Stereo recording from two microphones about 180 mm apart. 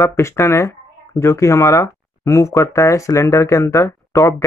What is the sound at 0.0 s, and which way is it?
Speech, 15° left (ahead or behind).